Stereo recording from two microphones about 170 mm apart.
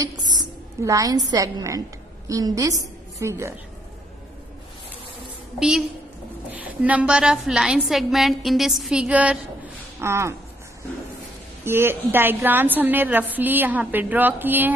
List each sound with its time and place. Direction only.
0.0 s a sound: 25° right (ahead or behind)
1.3 s a woman's voice: 20° right (ahead or behind)
5.6 s a woman's voice: 5° right (ahead or behind)
11.6 s a woman's voice: 15° right (ahead or behind)